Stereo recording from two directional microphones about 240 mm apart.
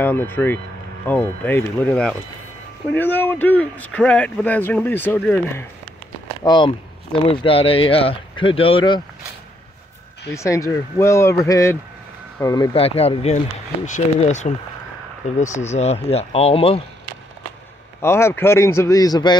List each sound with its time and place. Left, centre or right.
0.0 s speech: centre
6.4 s speech: centre
10.3 s speech: centre
18.0 s speech: centre